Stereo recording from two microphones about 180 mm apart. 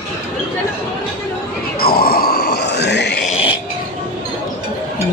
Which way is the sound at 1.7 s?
55° left (ahead or behind).